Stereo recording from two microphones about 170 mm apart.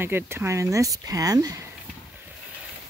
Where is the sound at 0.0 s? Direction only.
15° right (ahead or behind).